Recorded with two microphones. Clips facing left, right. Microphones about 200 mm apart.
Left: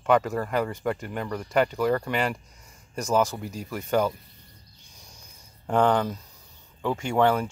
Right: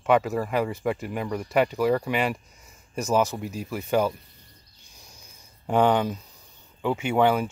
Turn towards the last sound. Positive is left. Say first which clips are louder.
# right 1 dB
turn(degrees=-5)  # may be behind; listen again after turning